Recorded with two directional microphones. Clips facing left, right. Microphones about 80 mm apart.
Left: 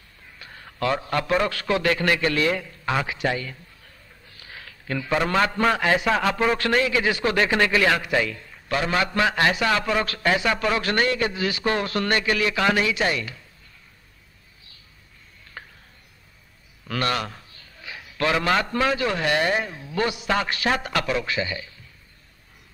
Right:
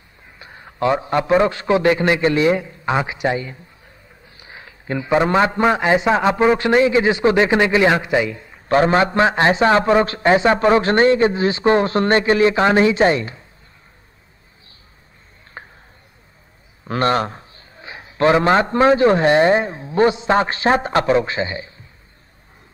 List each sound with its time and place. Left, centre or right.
0.4 s a man's voice: right
8.6 s a man's voice: right
15.6 s a sound: right
16.8 s a man's voice: right